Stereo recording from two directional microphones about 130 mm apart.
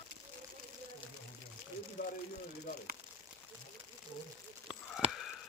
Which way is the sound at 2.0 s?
90° left.